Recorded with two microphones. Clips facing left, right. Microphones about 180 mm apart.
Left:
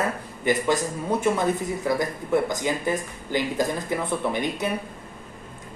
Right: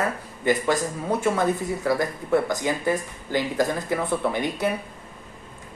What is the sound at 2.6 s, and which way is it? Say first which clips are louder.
Speech: right 1 dB; 20° left (ahead or behind).